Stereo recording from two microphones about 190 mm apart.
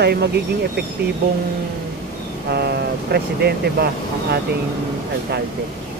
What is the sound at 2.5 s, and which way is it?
Speech, 60° right (ahead or behind).